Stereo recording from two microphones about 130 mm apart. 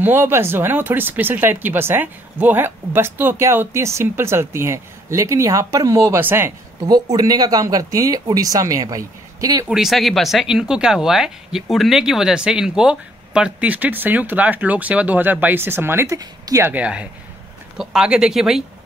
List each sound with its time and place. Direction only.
0.0 s speech: 15° right (ahead or behind)
6.9 s speech: 30° right (ahead or behind)
9.7 s speech: 5° right (ahead or behind); by 16.2 s 20° right (ahead or behind)
16.2 s speech: 30° right (ahead or behind)
16.6 s speech: 10° right (ahead or behind)